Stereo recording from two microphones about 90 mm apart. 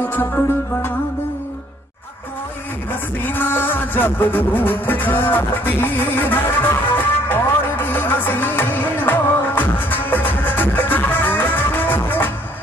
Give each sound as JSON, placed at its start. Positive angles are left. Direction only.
{"t": 0.0, "sound": "music", "side_deg": 20}
{"t": 2.9, "sound": "music", "side_deg": 20}